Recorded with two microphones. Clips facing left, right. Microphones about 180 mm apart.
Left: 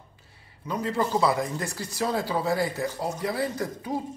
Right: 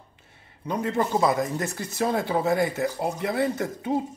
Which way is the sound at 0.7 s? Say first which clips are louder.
Right 2 dB; 25° right (ahead or behind).